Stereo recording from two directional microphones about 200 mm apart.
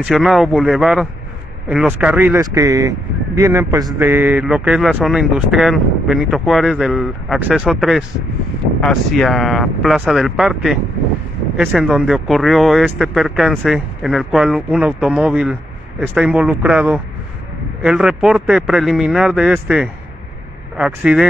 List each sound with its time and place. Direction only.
0.0 s speech: centre (ahead or behind)